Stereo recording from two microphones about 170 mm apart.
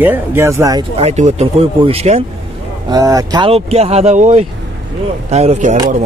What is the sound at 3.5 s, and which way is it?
Speech, 35° right (ahead or behind).